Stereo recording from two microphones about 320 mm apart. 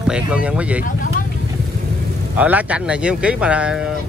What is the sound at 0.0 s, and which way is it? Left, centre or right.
Speech, centre.